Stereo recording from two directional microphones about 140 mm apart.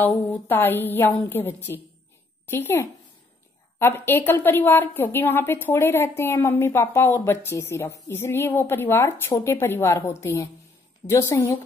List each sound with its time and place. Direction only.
0.0 s a woman's voice: 15° left (ahead or behind)